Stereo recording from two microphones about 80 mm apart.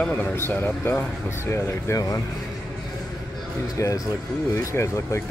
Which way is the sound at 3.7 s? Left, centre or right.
Left.